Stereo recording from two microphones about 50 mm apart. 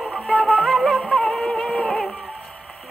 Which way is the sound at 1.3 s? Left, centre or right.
Centre.